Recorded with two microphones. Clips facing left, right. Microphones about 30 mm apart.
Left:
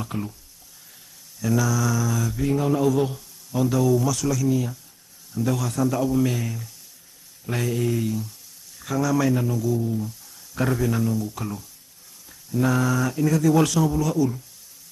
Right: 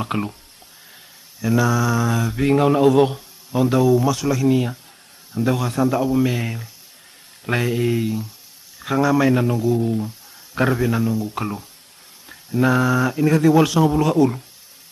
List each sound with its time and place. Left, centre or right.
0.0 s mantra: right
1.4 s speech: right
2.4 s mantra: right
3.2 s speech: right
4.5 s mantra: right
5.3 s speech: right
10.0 s a man's voice: right
11.2 s speech: right
13.8 s mantra: right